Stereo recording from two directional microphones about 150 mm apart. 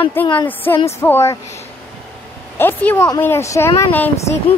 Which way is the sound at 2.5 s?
15° left (ahead or behind).